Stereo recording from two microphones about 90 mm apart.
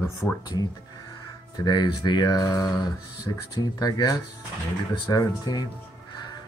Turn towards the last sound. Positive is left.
turn(degrees=50)  # may be behind; listen again after turning